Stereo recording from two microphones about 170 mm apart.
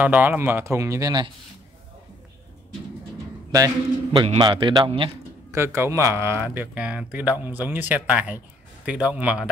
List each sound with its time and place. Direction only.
0.0 s speech: 10° right (ahead or behind)
3.5 s a man's voice: 20° right (ahead or behind)
5.5 s speech: 15° right (ahead or behind)